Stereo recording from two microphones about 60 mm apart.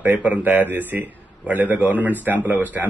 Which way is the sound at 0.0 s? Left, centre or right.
Right.